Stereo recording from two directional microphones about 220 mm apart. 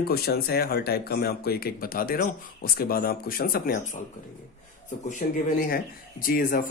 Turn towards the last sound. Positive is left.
turn(degrees=40)  # may be behind; listen again after turning